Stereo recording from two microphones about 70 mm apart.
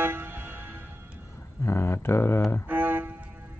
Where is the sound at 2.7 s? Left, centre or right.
Right.